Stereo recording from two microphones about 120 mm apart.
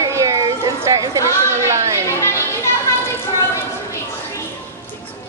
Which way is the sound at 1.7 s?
25° right (ahead or behind).